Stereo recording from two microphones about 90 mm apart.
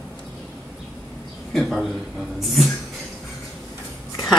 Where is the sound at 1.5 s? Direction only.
Centre (ahead or behind).